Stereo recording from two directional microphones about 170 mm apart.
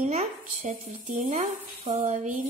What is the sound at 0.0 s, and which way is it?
Speech, 45° right (ahead or behind).